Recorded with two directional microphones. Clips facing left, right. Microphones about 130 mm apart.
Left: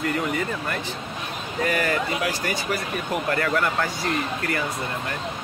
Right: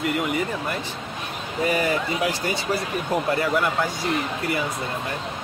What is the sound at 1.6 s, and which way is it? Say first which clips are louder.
Speech: right 1 dB; 15° right (ahead or behind).